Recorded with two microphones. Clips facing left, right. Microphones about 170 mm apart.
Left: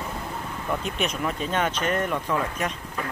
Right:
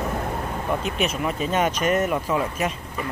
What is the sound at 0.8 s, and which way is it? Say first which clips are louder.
Speech: right 3 dB; 5° right (ahead or behind).